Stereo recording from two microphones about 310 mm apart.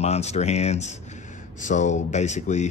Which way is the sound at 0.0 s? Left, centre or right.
Left.